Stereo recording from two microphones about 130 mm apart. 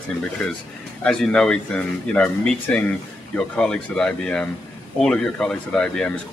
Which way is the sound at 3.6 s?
5° left (ahead or behind).